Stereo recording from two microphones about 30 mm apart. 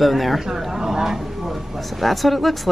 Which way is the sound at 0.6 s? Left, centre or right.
Centre.